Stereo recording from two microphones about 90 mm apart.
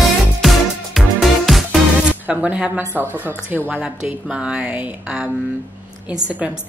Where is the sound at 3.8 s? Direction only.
10° right (ahead or behind).